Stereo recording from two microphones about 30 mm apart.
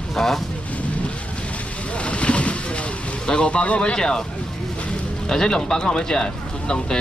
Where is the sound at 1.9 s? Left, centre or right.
Left.